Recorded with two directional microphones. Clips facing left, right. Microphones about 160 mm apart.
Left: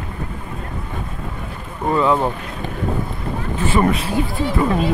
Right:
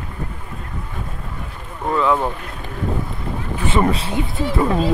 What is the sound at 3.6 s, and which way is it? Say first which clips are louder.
Speech: left 1 dB; 20° right (ahead or behind).